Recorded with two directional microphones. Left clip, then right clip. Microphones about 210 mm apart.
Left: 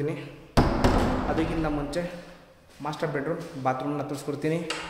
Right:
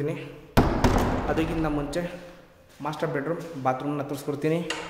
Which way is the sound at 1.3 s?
15° right (ahead or behind).